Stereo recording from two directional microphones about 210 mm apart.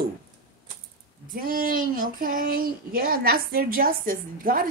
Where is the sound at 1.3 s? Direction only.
40° right (ahead or behind).